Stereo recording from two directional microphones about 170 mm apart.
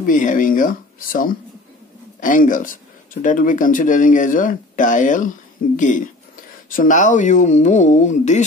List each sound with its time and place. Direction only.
0.0 s speech: 50° left (ahead or behind)